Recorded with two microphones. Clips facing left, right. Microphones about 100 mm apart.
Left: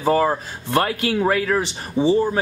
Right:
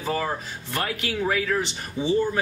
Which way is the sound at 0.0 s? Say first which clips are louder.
Left 9 dB; 40° left (ahead or behind).